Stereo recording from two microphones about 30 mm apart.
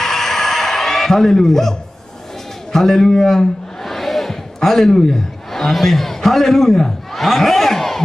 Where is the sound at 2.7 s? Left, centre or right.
Centre.